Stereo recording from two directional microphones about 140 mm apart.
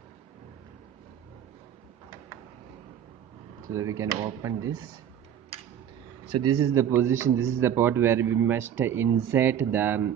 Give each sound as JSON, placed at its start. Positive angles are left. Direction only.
{"t": 3.7, "sound": "a man's voice", "side_deg": -25}
{"t": 6.6, "sound": "a man's voice", "side_deg": -20}